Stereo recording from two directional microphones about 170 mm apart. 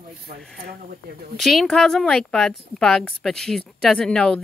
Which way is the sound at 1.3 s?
Centre (ahead or behind).